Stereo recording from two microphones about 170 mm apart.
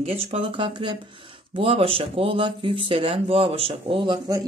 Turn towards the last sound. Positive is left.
turn(degrees=-25)  # may be behind; listen again after turning